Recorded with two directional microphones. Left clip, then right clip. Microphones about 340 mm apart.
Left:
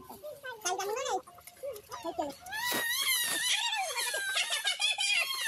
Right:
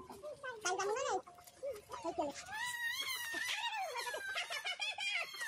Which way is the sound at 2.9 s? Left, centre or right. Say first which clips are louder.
Left 9 dB; centre.